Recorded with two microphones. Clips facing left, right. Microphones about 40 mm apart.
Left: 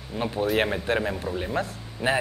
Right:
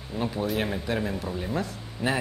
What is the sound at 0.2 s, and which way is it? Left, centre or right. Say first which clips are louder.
Speech: left 4 dB; left.